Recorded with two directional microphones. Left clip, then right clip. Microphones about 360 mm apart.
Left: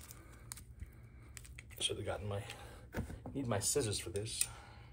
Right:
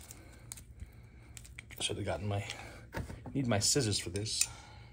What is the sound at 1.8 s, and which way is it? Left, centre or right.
Speech, right.